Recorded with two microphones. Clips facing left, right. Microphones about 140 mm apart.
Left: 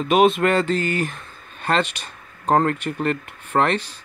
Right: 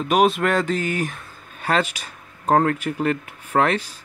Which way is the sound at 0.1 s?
Centre (ahead or behind).